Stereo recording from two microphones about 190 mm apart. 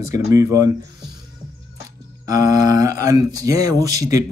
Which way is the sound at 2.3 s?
20° right (ahead or behind).